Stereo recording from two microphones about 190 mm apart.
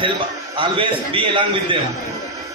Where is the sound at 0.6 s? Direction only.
25° right (ahead or behind).